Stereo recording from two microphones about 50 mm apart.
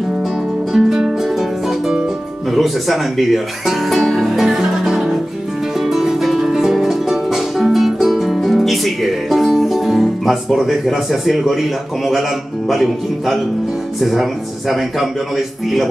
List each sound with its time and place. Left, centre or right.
0.7 s music: centre
2.5 s speech: centre
4.6 s music: centre
13.9 s speech: centre